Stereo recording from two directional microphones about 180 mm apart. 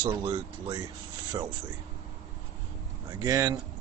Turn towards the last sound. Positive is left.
turn(degrees=-20)  # may be behind; listen again after turning